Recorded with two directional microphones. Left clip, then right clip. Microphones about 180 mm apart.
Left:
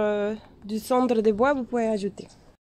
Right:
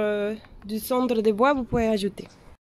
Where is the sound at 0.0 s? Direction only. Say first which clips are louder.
Even; centre (ahead or behind).